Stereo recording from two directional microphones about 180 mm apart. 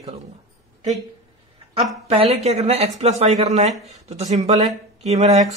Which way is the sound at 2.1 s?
35° right (ahead or behind).